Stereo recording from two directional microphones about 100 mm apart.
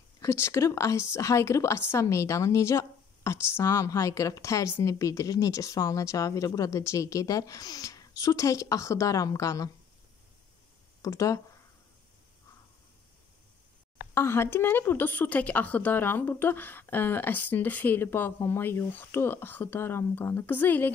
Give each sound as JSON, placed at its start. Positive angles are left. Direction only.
{"t": 0.2, "sound": "speech", "side_deg": 30}
{"t": 11.0, "sound": "speech", "side_deg": 35}
{"t": 14.1, "sound": "a woman's voice", "side_deg": 25}